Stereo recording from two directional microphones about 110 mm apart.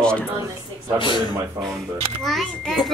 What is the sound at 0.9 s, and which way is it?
Speech, 45° left (ahead or behind).